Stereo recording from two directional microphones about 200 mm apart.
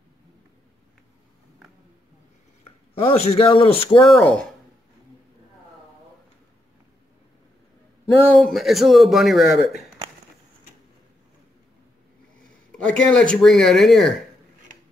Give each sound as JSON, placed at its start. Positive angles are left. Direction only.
{"t": 2.6, "sound": "speech", "side_deg": 25}
{"t": 4.1, "sound": "speech", "side_deg": 5}
{"t": 8.2, "sound": "speech", "side_deg": 5}
{"t": 12.7, "sound": "speech", "side_deg": 5}